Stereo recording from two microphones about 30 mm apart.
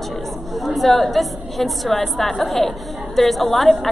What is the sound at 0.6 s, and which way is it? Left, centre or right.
A woman's voice, centre.